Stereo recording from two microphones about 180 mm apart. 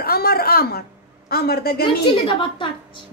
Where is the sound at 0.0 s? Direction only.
60° left (ahead or behind).